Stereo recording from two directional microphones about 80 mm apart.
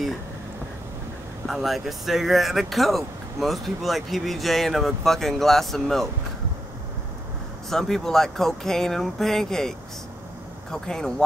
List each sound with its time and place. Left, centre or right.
1.5 s speech: centre
7.7 s speech: centre